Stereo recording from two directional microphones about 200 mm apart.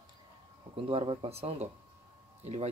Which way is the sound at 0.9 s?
25° right (ahead or behind).